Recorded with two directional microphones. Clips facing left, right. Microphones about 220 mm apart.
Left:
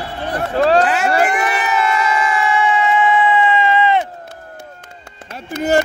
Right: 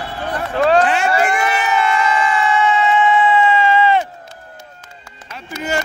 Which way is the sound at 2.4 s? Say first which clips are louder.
Even; 15° left (ahead or behind).